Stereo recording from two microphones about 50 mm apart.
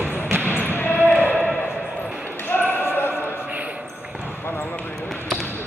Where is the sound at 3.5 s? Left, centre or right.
Right.